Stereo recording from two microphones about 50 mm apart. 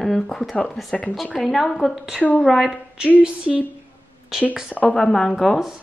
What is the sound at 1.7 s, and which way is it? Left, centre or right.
A woman's voice, centre.